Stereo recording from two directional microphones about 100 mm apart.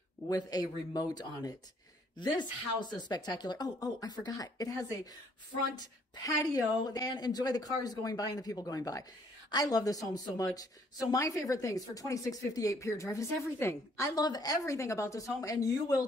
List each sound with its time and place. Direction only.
0.3 s speech: 40° left (ahead or behind)
14.2 s speech: 40° left (ahead or behind)